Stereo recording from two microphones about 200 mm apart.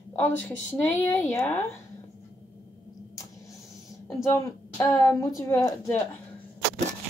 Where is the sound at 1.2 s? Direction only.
10° left (ahead or behind).